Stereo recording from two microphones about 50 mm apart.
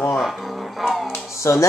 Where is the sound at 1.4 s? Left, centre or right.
Left.